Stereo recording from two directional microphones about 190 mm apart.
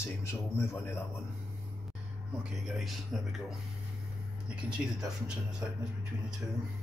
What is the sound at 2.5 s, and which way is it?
Speech, centre (ahead or behind).